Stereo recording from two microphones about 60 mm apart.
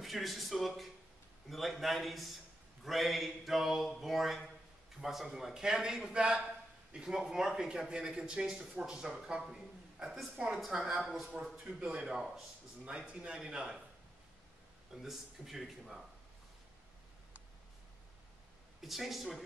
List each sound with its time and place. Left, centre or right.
0.0 s a man's voice: centre
9.4 s a sound: centre
10.3 s a man's voice: centre
15.0 s speech: centre
18.8 s speech: centre